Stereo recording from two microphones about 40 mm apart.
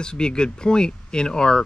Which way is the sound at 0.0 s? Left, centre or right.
Left.